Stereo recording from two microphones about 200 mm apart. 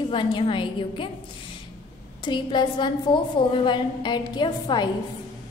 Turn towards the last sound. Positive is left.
turn(degrees=20)  # may be behind; listen again after turning